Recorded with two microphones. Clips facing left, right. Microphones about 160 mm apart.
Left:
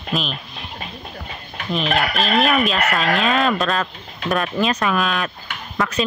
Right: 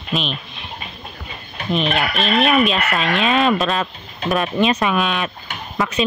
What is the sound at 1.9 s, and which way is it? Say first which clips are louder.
Speech: even; 40° left (ahead or behind).